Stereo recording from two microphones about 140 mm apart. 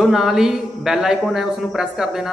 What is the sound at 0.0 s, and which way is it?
Speech, centre (ahead or behind).